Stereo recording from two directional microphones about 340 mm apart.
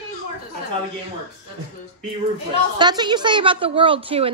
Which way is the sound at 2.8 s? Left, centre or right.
Centre.